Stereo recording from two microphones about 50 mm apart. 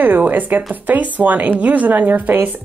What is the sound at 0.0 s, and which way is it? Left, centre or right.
Speech, right.